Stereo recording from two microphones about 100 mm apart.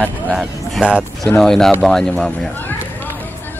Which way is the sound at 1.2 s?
5° left (ahead or behind).